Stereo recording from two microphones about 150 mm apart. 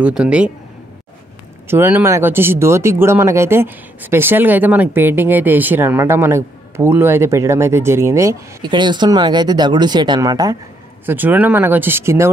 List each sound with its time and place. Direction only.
0.0 s speech: 5° right (ahead or behind)
1.7 s speech: 15° right (ahead or behind)
11.1 s speech: 10° right (ahead or behind)